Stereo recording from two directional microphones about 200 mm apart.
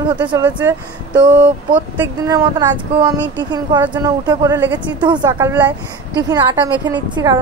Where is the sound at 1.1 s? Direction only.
20° right (ahead or behind).